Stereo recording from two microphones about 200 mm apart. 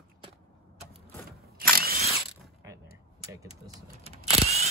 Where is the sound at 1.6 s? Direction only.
50° right (ahead or behind).